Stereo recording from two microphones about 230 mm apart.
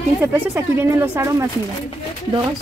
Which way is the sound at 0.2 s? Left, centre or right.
Centre.